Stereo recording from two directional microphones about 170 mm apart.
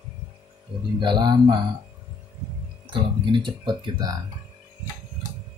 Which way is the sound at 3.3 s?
25° right (ahead or behind).